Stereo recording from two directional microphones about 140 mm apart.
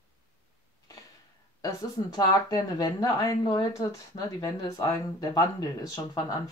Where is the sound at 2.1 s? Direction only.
30° left (ahead or behind).